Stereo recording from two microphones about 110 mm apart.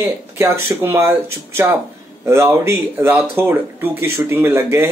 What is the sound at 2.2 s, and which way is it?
Speech, 25° right (ahead or behind).